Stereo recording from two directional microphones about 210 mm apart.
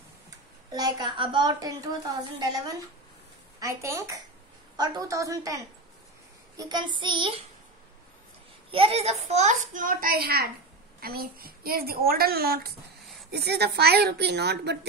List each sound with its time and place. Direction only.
0.7 s a woman's voice: 20° right (ahead or behind)
8.7 s a child's voice: 30° right (ahead or behind); by 14.9 s 50° right (ahead or behind)